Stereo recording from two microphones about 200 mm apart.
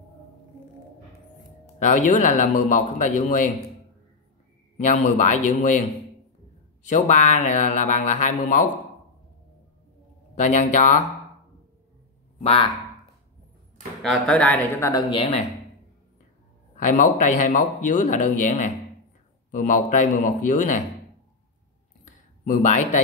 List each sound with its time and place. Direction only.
1.8 s a man's voice: 40° left (ahead or behind)
4.7 s a man's voice: 40° left (ahead or behind)
6.9 s a man's voice: 40° left (ahead or behind)
10.4 s a man's voice: 40° left (ahead or behind)
12.4 s speech: 30° left (ahead or behind)
14.2 s speech: 5° left (ahead or behind); by 15.4 s 30° left (ahead or behind)
16.7 s a man's voice: 40° left (ahead or behind)
22.0 s a sound: 40° left (ahead or behind)